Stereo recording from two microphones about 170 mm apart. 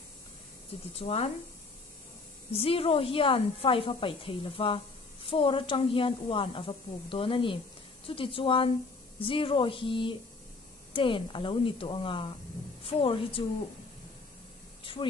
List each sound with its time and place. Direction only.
0.9 s speech: 35° left (ahead or behind)
2.5 s speech: 35° left (ahead or behind)
14.8 s a sound: 30° left (ahead or behind)